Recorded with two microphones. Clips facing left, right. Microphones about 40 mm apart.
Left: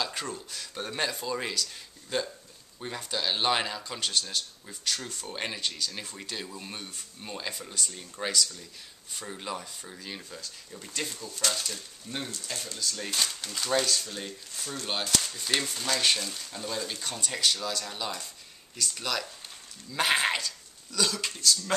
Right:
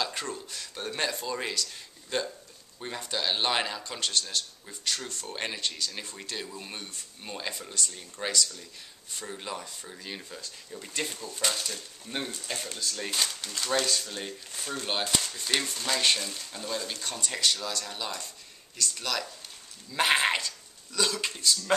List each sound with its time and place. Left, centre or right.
0.0 s a man's voice: centre; by 12.8 s right
12.8 s speech: centre
15.2 s a man's voice: centre
19.9 s speech: centre